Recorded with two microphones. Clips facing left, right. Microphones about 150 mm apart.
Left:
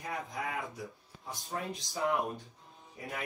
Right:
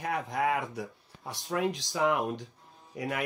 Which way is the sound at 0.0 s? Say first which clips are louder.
Right 8 dB; 90° right.